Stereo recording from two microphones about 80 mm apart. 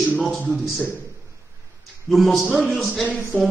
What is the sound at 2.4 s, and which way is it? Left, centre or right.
Speech, centre.